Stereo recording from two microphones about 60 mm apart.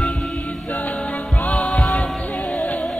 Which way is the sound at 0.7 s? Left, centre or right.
Left.